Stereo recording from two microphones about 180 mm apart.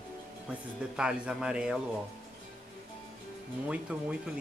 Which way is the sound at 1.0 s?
5° right (ahead or behind).